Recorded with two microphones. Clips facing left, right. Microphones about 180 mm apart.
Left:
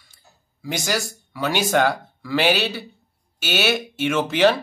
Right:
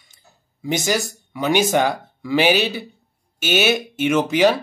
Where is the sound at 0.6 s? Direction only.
20° right (ahead or behind).